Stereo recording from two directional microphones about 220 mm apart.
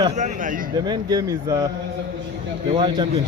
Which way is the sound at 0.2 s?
35° right (ahead or behind).